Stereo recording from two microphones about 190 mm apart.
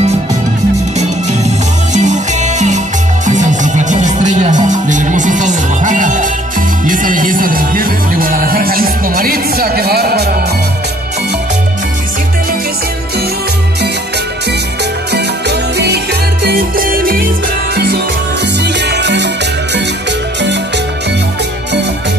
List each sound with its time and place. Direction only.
2.0 s music: 40° right (ahead or behind); by 10.2 s 55° right (ahead or behind)
15.1 s music: 60° right (ahead or behind)
16.4 s music: 50° right (ahead or behind)
18.6 s music: 65° right (ahead or behind)